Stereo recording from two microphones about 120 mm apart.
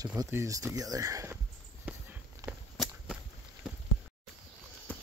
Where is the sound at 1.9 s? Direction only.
15° right (ahead or behind).